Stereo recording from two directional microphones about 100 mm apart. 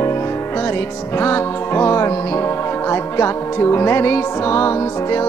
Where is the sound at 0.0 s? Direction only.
30° left (ahead or behind).